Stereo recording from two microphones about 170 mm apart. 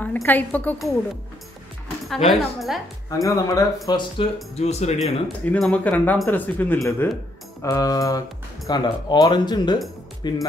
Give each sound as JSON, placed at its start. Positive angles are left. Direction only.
{"t": 0.0, "sound": "speech", "side_deg": 10}
{"t": 2.2, "sound": "a woman's voice", "side_deg": 0}
{"t": 3.1, "sound": "speech", "side_deg": 20}
{"t": 4.6, "sound": "speech", "side_deg": 40}
{"t": 4.9, "sound": "speech", "side_deg": 5}